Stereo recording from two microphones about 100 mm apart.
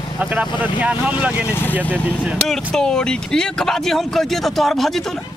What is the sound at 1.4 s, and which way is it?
Speech, 20° left (ahead or behind).